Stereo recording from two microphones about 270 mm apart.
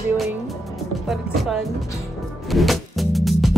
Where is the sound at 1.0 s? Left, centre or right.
Centre.